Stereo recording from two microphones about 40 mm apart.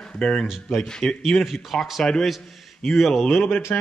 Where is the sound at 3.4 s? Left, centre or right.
Left.